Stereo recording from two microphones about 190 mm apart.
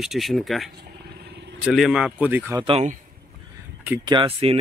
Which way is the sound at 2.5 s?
30° right (ahead or behind).